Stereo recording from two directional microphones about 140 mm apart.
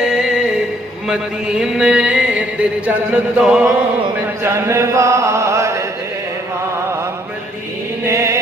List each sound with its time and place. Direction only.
0.0 s music: 5° right (ahead or behind)
1.0 s a sound: 5° right (ahead or behind)
4.4 s chant: 20° right (ahead or behind)
8.0 s mantra: 20° right (ahead or behind)